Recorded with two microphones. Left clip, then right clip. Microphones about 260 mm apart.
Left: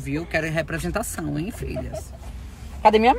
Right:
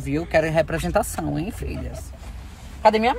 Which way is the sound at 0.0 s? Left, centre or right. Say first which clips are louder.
Right 5 dB; centre.